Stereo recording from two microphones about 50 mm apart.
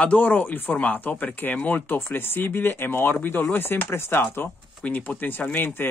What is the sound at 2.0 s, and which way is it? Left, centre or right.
Speech, left.